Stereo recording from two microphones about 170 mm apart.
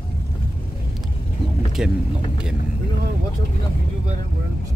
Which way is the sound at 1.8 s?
5° right (ahead or behind).